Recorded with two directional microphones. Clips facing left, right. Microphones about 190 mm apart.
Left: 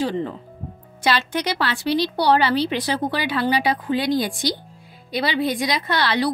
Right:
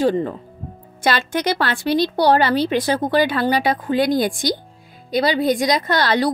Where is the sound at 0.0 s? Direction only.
45° right (ahead or behind).